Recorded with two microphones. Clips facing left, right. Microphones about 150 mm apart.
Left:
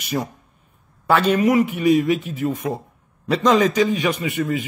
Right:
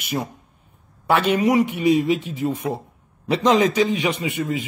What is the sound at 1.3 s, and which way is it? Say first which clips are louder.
Speech: left 1 dB; 10° right (ahead or behind).